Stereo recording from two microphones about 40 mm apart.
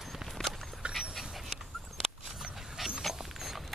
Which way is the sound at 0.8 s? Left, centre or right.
Right.